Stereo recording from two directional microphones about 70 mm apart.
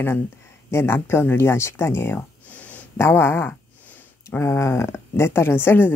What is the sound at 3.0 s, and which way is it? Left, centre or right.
Speech, left.